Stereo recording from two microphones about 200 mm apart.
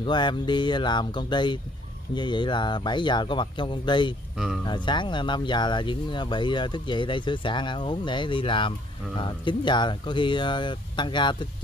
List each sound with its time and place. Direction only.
0.0 s speech: 20° left (ahead or behind)